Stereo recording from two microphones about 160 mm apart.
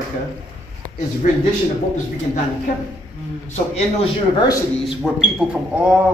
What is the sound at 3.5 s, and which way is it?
Speech, 40° left (ahead or behind).